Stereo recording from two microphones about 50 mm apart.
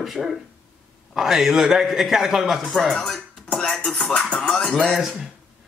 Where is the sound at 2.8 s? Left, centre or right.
Centre.